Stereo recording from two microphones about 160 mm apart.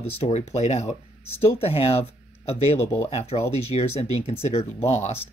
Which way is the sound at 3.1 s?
40° left (ahead or behind).